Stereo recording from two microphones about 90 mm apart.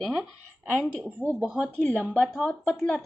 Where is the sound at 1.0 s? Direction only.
20° right (ahead or behind).